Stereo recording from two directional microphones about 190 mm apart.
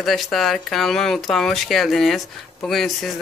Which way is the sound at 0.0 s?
Centre (ahead or behind).